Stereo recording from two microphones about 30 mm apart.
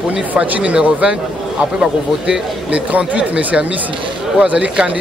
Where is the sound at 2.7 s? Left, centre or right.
Right.